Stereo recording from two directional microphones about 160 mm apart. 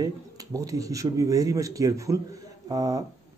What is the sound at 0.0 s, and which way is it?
Speech, 20° right (ahead or behind).